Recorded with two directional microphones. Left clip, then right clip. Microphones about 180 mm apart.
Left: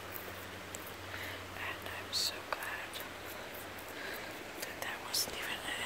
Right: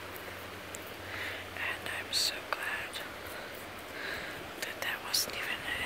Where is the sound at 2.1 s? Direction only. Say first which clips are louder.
Right 4 dB; centre (ahead or behind).